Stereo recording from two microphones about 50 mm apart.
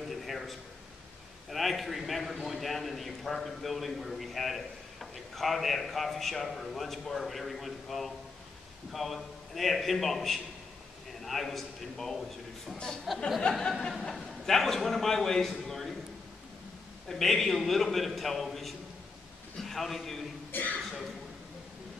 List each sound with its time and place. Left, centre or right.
0.1 s a sound: centre
1.5 s a man's voice: centre
12.7 s a sound: centre
14.4 s a man's voice: centre
17.1 s a man's voice: centre
20.5 s speech: left